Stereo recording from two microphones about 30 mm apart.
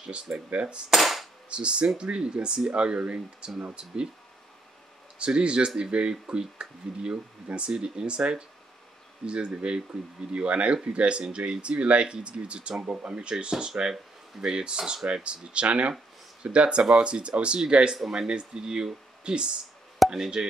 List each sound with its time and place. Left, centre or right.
0.0 s speech: right
0.5 s cap gun: right
0.8 s cap gun: centre
1.5 s speech: right
5.2 s speech: right